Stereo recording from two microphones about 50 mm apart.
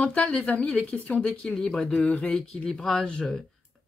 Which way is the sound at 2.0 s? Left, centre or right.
Left.